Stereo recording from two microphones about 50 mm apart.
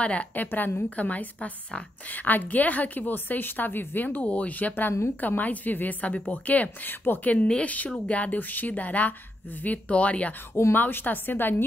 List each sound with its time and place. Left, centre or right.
0.0 s a woman's voice: left
0.8 s a woman's voice: left
7.2 s speech: left
8.1 s a woman's voice: left
10.7 s a woman's voice: left